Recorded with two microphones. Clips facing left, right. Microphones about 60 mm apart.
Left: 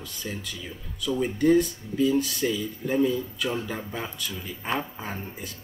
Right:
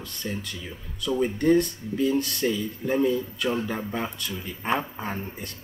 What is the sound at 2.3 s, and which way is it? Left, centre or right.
A man's voice, centre.